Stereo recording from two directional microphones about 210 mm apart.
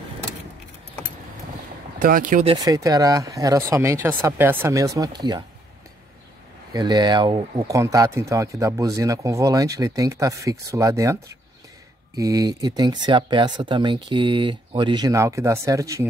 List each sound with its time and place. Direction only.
2.0 s speech: 40° right (ahead or behind)
2.4 s speech: 20° right (ahead or behind)
6.7 s speech: 20° right (ahead or behind)